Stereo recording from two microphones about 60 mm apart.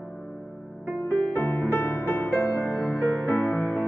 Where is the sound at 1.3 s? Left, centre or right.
Left.